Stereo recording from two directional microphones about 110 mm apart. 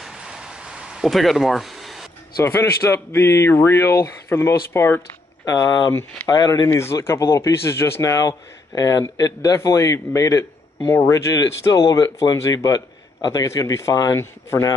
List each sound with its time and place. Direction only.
0.0 s a sound: 5° right (ahead or behind)
2.4 s a man's voice: 25° left (ahead or behind)
6.7 s a man's voice: 25° left (ahead or behind)